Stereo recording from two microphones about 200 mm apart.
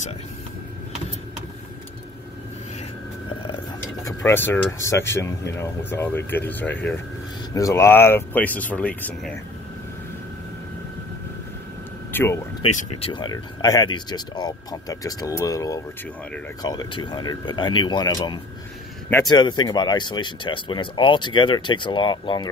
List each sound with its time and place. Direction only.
4.0 s speech: 10° left (ahead or behind)
12.1 s speech: 10° left (ahead or behind)
12.6 s speech: 30° left (ahead or behind)